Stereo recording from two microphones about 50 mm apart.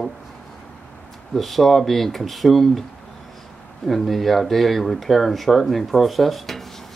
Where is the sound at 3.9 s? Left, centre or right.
Centre.